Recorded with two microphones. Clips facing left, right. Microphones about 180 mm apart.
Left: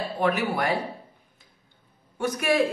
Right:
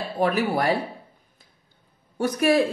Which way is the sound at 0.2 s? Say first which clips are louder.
Right 3 dB; 35° right (ahead or behind).